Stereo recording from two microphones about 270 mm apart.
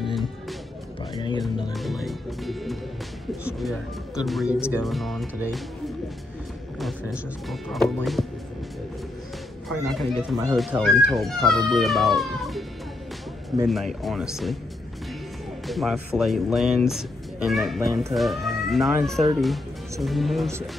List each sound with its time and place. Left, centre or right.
0.0 s music: centre
1.1 s speech: centre
1.7 s speech: centre
6.8 s speech: centre
9.9 s speech: centre
13.7 s speech: centre
15.6 s speech: centre